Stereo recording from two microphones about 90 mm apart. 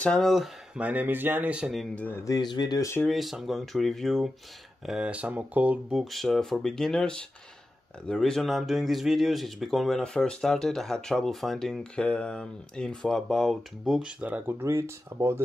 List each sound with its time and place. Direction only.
0.0 s speech: 5° left (ahead or behind)
0.7 s speech: 15° right (ahead or behind)
2.0 s speech: 20° left (ahead or behind)
2.2 s speech: 50° left (ahead or behind)
3.1 s speech: centre (ahead or behind)
4.8 s speech: 10° right (ahead or behind)
5.9 s speech: centre (ahead or behind)
14.2 s speech: 15° right (ahead or behind)
14.6 s speech: 30° right (ahead or behind)